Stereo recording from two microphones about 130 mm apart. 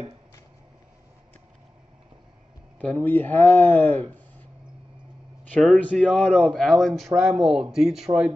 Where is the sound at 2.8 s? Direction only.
10° left (ahead or behind).